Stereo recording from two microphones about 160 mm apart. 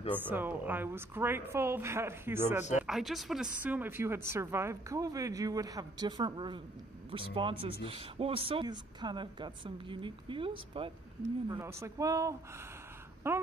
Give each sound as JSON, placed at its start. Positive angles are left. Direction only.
{"t": 0.2, "sound": "a woman's voice", "side_deg": -10}
{"t": 2.7, "sound": "a woman's voice", "side_deg": 0}
{"t": 11.4, "sound": "a woman's voice", "side_deg": -20}